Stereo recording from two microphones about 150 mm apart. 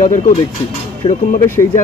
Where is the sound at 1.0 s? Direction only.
35° left (ahead or behind).